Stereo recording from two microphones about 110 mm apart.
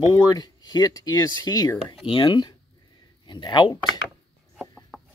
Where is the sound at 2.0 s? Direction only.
50° left (ahead or behind).